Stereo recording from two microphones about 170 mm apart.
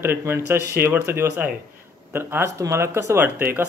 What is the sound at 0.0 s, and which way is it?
Speech, 15° right (ahead or behind).